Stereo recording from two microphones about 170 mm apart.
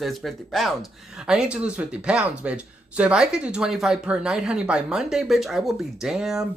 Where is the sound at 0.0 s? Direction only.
Centre (ahead or behind).